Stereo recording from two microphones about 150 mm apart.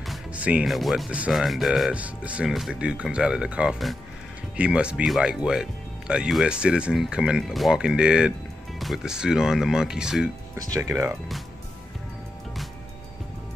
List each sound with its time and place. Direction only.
0.0 s speech: 5° right (ahead or behind)
10.5 s speech: 20° right (ahead or behind)